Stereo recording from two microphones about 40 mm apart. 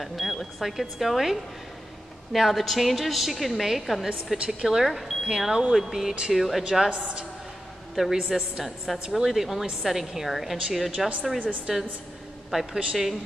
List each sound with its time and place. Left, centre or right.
0.0 s a woman's voice: centre
7.9 s a woman's voice: centre
11.3 s a woman's voice: right